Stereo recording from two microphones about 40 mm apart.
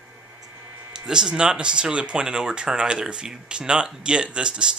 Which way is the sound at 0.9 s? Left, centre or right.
Centre.